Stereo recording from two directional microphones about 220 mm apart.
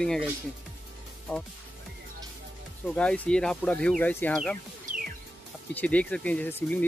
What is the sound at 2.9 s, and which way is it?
Speech, 5° left (ahead or behind).